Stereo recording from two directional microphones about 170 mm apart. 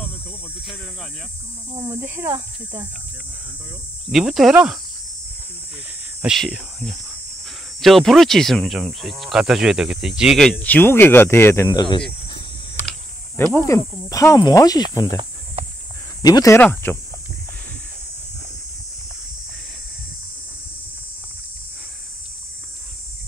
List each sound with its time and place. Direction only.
1.9 s speech: 15° right (ahead or behind)
4.1 s speech: centre (ahead or behind)
6.2 s speech: centre (ahead or behind); by 11.8 s 15° left (ahead or behind)
13.4 s speech: 15° left (ahead or behind)
16.3 s speech: 20° left (ahead or behind)